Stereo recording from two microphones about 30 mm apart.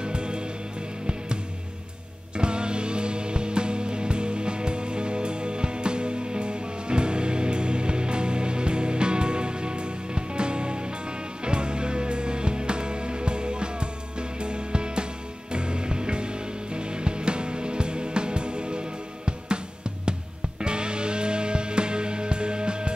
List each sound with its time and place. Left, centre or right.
0.0 s music: right
2.3 s music: right
20.6 s music: right